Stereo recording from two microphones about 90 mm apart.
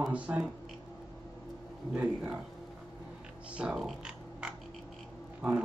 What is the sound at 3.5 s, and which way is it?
Speech, 10° right (ahead or behind).